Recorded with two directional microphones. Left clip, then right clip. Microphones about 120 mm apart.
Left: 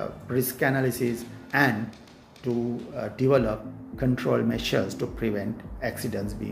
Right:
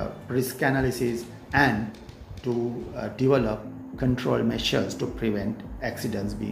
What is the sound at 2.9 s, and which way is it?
Speech, 40° left (ahead or behind).